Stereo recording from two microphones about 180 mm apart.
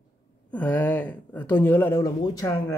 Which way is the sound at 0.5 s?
10° left (ahead or behind).